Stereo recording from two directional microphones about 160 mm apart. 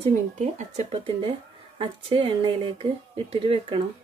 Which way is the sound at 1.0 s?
35° right (ahead or behind).